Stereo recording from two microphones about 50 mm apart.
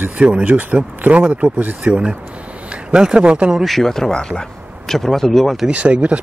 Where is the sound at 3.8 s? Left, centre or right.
Centre.